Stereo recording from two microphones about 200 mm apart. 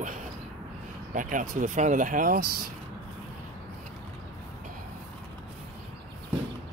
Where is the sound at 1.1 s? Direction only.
40° right (ahead or behind).